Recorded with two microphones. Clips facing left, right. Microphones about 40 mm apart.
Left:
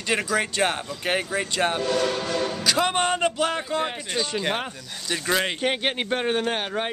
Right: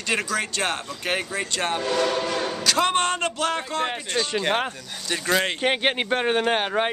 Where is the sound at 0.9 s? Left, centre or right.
Centre.